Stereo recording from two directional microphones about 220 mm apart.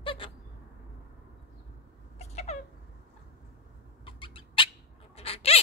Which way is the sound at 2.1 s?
30° left (ahead or behind).